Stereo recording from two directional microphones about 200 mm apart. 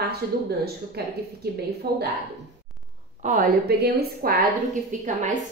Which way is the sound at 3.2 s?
40° right (ahead or behind).